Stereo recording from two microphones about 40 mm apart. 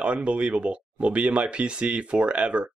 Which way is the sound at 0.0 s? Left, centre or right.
Right.